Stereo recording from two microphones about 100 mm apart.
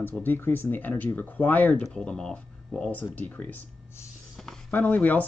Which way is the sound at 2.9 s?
15° left (ahead or behind).